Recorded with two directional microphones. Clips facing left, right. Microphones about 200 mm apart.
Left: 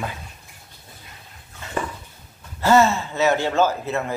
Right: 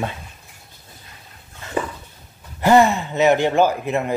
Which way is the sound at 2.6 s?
15° right (ahead or behind).